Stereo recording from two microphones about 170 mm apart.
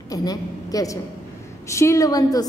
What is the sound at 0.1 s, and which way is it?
A woman's voice, 20° left (ahead or behind).